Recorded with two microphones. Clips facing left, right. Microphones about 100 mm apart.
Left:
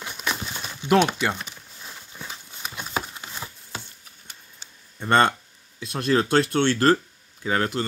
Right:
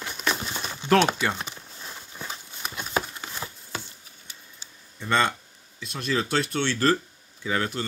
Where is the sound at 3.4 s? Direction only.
20° right (ahead or behind).